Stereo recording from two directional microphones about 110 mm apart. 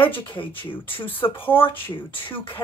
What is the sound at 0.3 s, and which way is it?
Speech, 50° left (ahead or behind).